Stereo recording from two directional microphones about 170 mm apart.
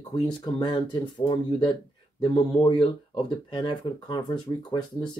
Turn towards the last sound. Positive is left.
turn(degrees=25)  # may be behind; listen again after turning